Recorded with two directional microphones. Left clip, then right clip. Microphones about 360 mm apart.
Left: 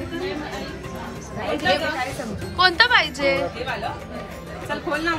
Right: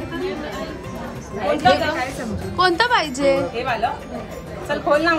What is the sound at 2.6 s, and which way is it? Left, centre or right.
Speech, centre.